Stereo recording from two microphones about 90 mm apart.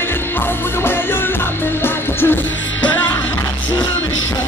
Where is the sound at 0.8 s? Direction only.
25° left (ahead or behind).